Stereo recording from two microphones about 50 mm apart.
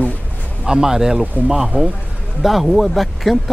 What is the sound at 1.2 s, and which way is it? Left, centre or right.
Speech, right.